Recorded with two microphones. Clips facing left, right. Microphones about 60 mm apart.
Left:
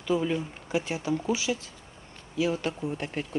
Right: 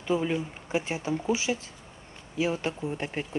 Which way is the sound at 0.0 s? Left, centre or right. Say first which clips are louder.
Even; right.